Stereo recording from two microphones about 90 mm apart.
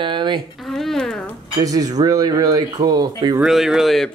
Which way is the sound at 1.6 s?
45° right (ahead or behind).